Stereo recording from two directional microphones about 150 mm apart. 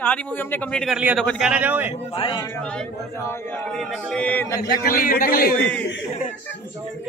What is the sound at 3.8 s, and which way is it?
Speech, 5° left (ahead or behind).